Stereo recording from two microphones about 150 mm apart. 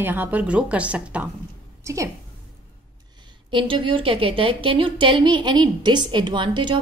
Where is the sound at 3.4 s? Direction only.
35° right (ahead or behind).